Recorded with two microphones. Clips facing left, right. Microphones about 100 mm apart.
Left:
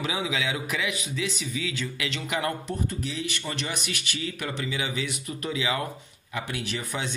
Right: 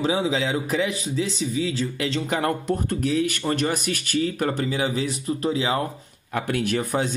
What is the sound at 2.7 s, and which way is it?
Speech, 55° right (ahead or behind).